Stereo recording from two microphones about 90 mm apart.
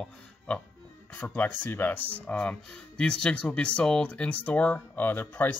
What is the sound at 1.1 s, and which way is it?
Speech, 20° left (ahead or behind).